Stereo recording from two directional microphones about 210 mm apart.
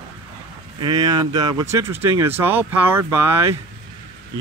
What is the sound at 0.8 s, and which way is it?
Speech, 20° right (ahead or behind).